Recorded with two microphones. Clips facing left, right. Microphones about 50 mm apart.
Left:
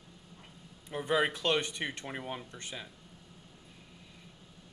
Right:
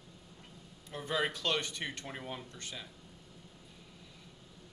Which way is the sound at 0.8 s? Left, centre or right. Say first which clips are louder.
Left 5 dB; centre.